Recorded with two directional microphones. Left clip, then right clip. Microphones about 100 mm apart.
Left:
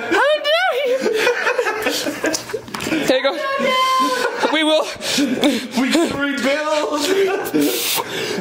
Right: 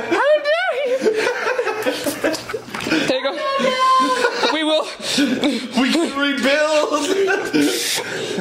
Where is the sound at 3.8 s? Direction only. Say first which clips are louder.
Right 2 dB; 30° left (ahead or behind).